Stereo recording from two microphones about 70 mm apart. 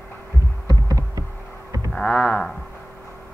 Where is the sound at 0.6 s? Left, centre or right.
Right.